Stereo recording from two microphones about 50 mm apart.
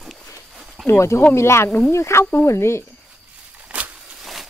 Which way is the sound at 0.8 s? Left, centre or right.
Left.